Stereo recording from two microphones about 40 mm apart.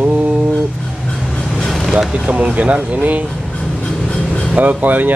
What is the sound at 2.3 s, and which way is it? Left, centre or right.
Speech, right.